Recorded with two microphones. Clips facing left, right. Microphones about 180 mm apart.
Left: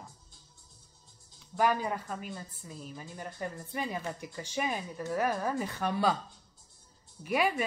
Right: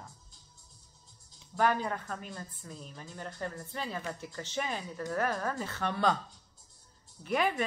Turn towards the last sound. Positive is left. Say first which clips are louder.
# left 1 dB
turn(degrees=10)  # may be behind; listen again after turning